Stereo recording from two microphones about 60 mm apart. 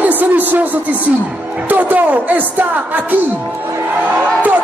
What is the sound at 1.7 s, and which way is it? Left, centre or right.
A woman's voice, right.